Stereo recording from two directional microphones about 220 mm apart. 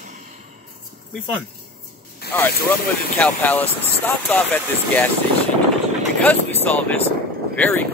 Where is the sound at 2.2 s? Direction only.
45° left (ahead or behind).